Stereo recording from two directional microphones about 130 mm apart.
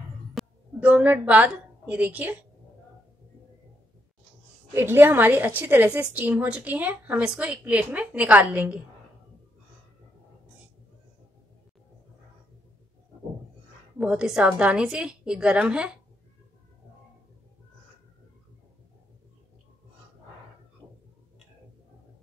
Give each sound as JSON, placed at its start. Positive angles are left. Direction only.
{"t": 0.4, "sound": "a sound", "side_deg": 0}
{"t": 0.7, "sound": "a woman's voice", "side_deg": -10}
{"t": 4.7, "sound": "a woman's voice", "side_deg": -15}
{"t": 13.9, "sound": "a woman's voice", "side_deg": -5}
{"t": 20.8, "sound": "tick-tock", "side_deg": -10}